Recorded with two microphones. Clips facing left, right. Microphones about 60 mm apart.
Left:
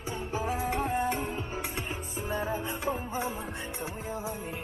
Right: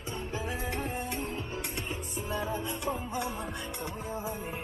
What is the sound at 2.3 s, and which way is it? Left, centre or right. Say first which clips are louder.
Music: left 2 dB; left.